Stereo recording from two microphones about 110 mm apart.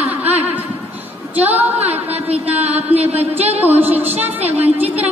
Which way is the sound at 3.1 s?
15° right (ahead or behind).